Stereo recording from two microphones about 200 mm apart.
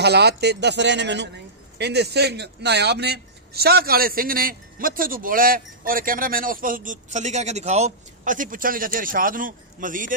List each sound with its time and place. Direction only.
0.0 s a man's voice: 55° right (ahead or behind)